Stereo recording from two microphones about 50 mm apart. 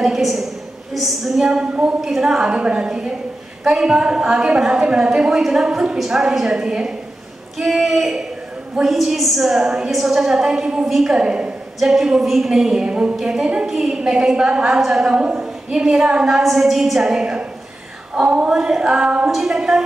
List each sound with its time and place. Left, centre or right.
0.0 s a woman's voice: centre
1.5 s a woman's voice: centre
2.0 s a woman's voice: centre
7.5 s a sound: centre
8.8 s a woman's voice: centre
9.5 s a woman's voice: centre
11.2 s a woman's voice: right
11.8 s a woman's voice: centre
18.5 s a woman's voice: centre